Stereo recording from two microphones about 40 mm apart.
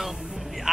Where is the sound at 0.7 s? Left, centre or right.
Centre.